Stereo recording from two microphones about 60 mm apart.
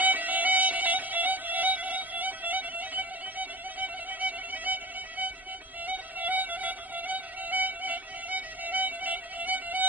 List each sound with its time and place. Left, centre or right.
0.0 s music: right